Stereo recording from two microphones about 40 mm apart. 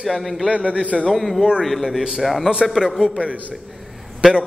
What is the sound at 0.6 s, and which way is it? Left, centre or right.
Speech, right.